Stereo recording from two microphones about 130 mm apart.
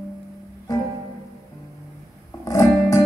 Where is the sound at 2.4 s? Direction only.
25° left (ahead or behind).